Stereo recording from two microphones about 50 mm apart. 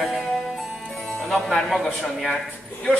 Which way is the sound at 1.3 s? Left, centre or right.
Centre.